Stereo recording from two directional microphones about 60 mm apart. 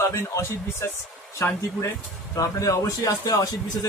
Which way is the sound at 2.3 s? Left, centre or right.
Left.